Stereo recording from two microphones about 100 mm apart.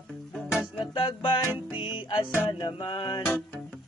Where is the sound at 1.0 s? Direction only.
55° left (ahead or behind).